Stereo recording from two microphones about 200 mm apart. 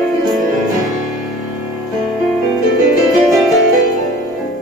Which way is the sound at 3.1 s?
Centre (ahead or behind).